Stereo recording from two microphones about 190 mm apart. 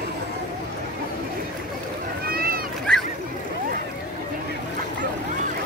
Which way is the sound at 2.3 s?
50° right (ahead or behind).